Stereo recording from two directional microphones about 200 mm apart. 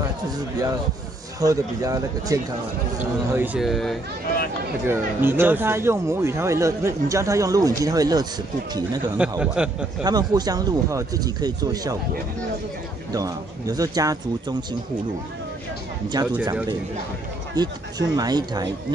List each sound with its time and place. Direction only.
1.4 s speech: 15° right (ahead or behind)
3.0 s speech: 5° right (ahead or behind)
4.8 s speech: 10° right (ahead or behind)
9.4 s speech: 5° right (ahead or behind)
10.0 s speech: 20° right (ahead or behind)
13.1 s speech: 20° right (ahead or behind)
17.6 s speech: 20° right (ahead or behind)